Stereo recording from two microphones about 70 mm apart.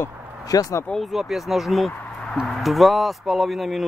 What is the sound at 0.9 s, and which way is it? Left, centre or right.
Speech, centre.